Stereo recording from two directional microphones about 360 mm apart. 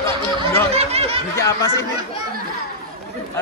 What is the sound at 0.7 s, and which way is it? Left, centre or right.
Snicker, centre.